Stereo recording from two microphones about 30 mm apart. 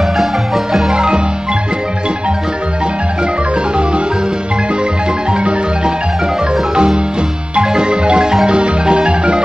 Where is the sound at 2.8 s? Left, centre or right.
Right.